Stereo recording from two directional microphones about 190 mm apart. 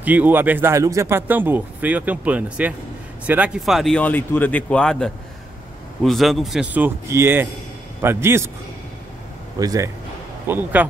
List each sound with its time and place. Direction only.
0.0 s speech: 10° right (ahead or behind)
9.6 s speech: 20° right (ahead or behind)